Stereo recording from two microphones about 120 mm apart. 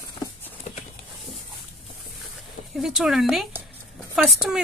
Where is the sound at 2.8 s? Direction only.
5° right (ahead or behind).